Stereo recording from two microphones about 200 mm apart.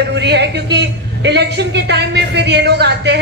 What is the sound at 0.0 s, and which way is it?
A man's voice, 60° right (ahead or behind).